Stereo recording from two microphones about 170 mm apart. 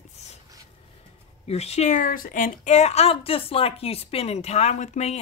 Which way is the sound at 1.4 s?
40° left (ahead or behind).